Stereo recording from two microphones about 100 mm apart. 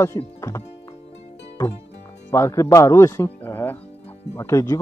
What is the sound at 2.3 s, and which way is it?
Speech, 30° left (ahead or behind).